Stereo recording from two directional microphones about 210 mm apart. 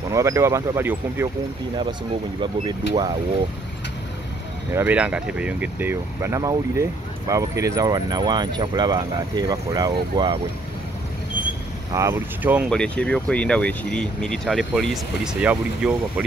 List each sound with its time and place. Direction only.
0.1 s speech: 15° right (ahead or behind)
4.7 s speech: 5° right (ahead or behind)
11.9 s speech: 15° right (ahead or behind)
12.6 s speech: 5° left (ahead or behind)